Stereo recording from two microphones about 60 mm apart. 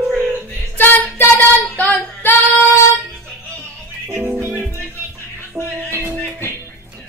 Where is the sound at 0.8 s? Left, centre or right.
Left.